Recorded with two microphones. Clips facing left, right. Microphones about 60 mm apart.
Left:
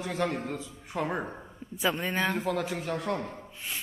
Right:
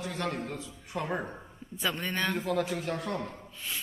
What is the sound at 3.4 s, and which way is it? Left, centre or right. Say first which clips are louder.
Speech: left 1 dB; centre.